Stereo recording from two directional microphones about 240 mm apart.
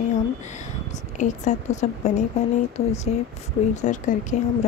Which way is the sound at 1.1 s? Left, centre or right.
Left.